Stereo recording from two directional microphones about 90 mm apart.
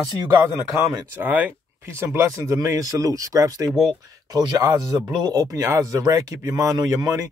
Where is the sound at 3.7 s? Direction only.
5° left (ahead or behind).